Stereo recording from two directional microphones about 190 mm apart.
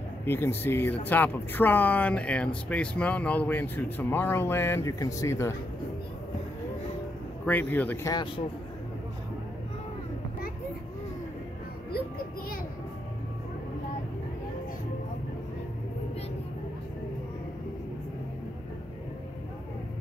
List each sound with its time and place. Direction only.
0.2 s speech: 10° left (ahead or behind)
7.4 s speech: 10° left (ahead or behind)
8.1 s speech: 25° left (ahead or behind)